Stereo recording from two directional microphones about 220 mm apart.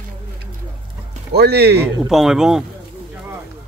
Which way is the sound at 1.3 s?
45° right (ahead or behind).